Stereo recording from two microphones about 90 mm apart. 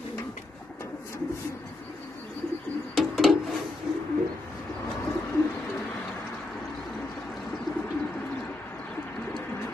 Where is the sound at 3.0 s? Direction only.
Centre (ahead or behind).